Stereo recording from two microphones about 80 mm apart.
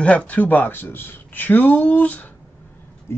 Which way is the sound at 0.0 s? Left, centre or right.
Centre.